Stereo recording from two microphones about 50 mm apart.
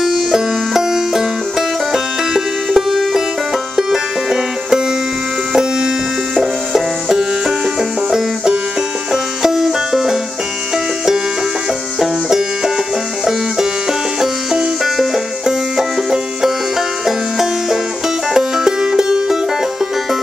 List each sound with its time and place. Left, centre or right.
0.0 s music: centre
2.3 s banjo: centre
3.7 s music: centre
7.1 s banjo: centre
9.1 s music: centre
12.0 s music: centre
14.2 s banjo: centre
18.3 s music: centre